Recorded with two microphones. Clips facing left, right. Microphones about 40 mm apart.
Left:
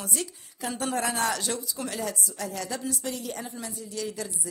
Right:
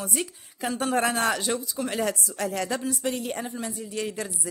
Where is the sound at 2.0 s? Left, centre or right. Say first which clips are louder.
Right 6 dB; right.